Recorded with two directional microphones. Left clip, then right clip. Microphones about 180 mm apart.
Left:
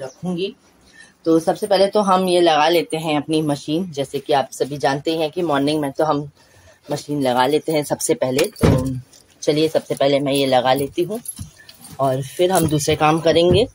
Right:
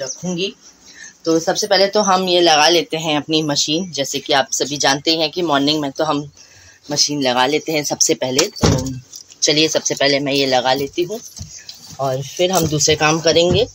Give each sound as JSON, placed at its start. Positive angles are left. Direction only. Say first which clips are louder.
{"t": 0.0, "sound": "speech", "louder": "right 3 dB", "side_deg": 5}